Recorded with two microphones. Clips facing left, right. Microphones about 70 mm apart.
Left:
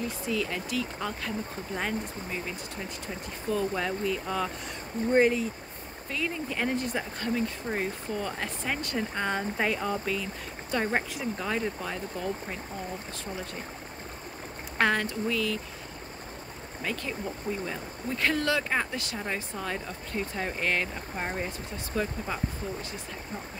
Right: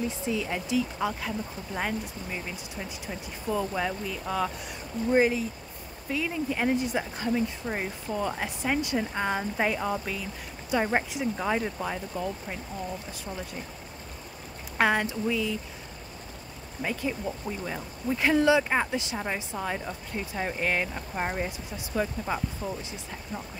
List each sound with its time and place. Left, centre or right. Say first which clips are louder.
0.2 s speech: right 1 dB; centre
3.4 s speech: even; centre
14.8 s speech: right 1 dB; centre
16.8 s speech: right 3 dB; centre